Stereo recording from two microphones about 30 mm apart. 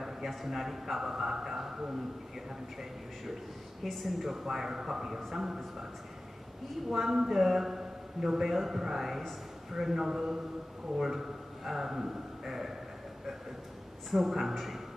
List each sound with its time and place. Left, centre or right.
0.3 s a man's voice: centre
3.8 s a man's voice: centre
6.9 s a man's voice: centre
14.1 s a man's voice: centre